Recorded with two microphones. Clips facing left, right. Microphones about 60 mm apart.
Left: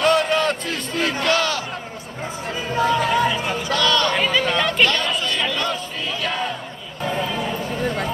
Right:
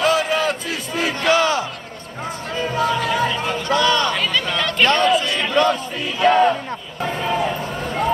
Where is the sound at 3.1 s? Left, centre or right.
Centre.